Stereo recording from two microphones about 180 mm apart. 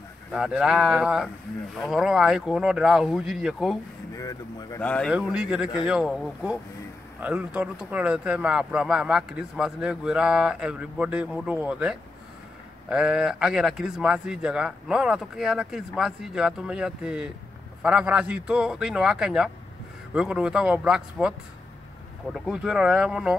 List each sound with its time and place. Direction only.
0.3 s a man's voice: 5° right (ahead or behind)
4.2 s speech: 20° left (ahead or behind)
4.8 s a man's voice: 5° left (ahead or behind)
5.1 s a man's voice: 5° right (ahead or behind)